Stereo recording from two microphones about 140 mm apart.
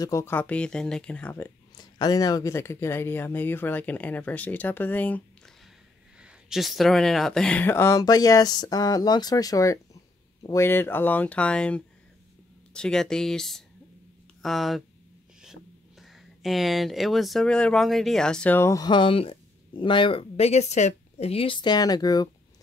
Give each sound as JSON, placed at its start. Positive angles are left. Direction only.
{"t": 0.0, "sound": "speech", "side_deg": 20}
{"t": 1.8, "sound": "speech", "side_deg": 30}
{"t": 6.1, "sound": "speech", "side_deg": -5}